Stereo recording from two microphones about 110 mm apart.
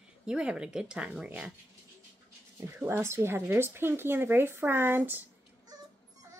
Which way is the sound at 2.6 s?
20° right (ahead or behind).